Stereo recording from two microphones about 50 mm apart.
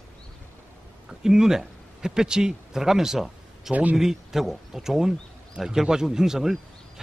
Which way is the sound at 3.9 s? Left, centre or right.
Centre.